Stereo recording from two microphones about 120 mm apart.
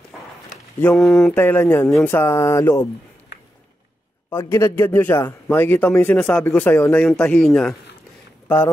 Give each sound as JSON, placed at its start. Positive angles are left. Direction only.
{"t": 0.9, "sound": "speech", "side_deg": 5}
{"t": 1.3, "sound": "speech", "side_deg": 20}
{"t": 4.3, "sound": "a man's voice", "side_deg": 20}